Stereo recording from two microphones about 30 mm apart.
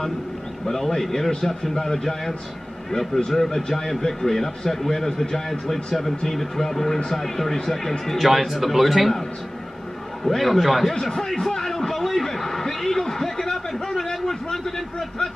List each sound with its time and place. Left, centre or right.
0.7 s speech: centre
8.3 s speech: centre
10.2 s speech: centre
11.0 s speech: centre
11.4 s a sound: centre